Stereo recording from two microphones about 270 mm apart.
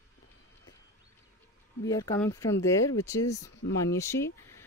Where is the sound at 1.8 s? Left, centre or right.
Centre.